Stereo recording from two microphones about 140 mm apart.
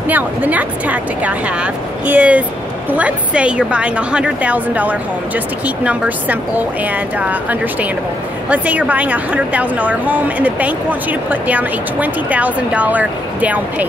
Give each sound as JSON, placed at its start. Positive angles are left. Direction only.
{"t": 0.1, "sound": "a woman's voice", "side_deg": -10}